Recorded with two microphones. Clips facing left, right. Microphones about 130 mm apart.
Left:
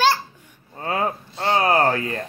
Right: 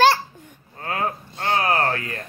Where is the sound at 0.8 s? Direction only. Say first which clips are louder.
Left 2 dB; 30° left (ahead or behind).